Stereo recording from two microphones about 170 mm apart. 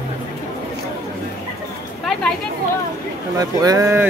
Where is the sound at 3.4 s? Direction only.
20° right (ahead or behind).